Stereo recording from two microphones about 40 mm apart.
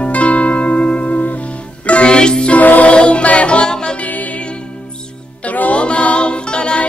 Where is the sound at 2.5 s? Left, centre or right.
Left.